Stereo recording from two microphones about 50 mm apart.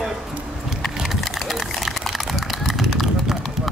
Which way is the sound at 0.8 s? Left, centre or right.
Centre.